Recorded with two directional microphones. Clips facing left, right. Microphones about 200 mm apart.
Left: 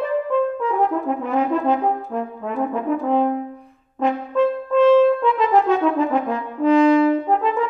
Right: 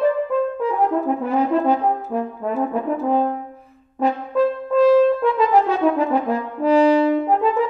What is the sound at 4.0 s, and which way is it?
French horn, 35° right (ahead or behind).